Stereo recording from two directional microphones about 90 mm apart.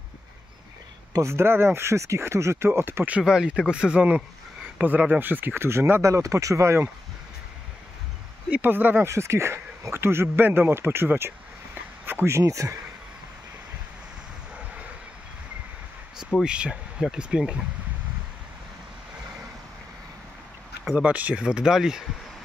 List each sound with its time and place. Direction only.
1.1 s speech: 30° right (ahead or behind)
3.2 s speech: 10° right (ahead or behind); by 6.9 s 30° right (ahead or behind)
8.5 s speech: 20° right (ahead or behind); by 12.7 s 35° right (ahead or behind)
16.4 s speech: 10° right (ahead or behind)
20.9 s speech: 15° right (ahead or behind)